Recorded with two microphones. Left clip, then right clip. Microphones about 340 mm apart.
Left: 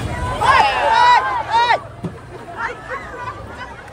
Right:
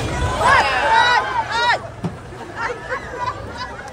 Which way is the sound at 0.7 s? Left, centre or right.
Left.